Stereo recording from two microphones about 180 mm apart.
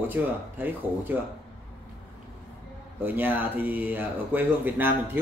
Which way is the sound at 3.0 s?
10° right (ahead or behind).